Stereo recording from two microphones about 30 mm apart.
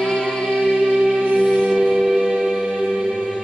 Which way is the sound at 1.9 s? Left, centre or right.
Centre.